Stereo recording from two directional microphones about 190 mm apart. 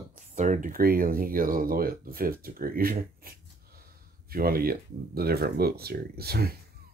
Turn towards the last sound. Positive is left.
turn(degrees=-55)  # may be behind; listen again after turning